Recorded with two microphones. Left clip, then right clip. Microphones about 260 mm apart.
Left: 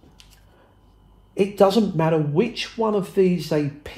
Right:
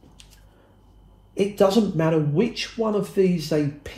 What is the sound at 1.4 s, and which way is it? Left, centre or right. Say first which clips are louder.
Speech: left 2 dB; left.